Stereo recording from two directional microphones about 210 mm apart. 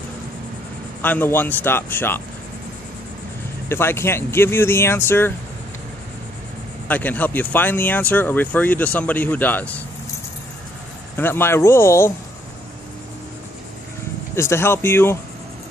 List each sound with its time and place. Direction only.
1.0 s speech: 10° left (ahead or behind)
3.6 s speech: 10° left (ahead or behind)
6.9 s speech: 10° left (ahead or behind)
11.1 s speech: 10° left (ahead or behind)
14.3 s speech: 10° left (ahead or behind)